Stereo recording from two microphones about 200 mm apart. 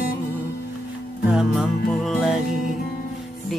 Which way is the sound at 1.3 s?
5° right (ahead or behind).